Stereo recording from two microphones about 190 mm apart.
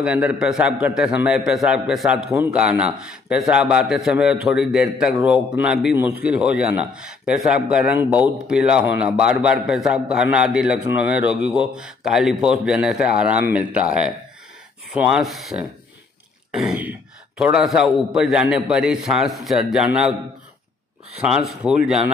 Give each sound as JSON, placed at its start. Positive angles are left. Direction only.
{"t": 0.0, "sound": "a man's voice", "side_deg": -5}
{"t": 15.0, "sound": "a man's voice", "side_deg": -5}
{"t": 21.2, "sound": "a man's voice", "side_deg": -5}